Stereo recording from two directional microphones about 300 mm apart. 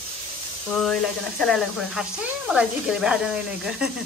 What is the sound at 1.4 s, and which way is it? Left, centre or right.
A woman's voice, centre.